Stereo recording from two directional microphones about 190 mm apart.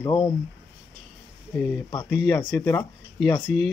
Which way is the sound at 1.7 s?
10° left (ahead or behind).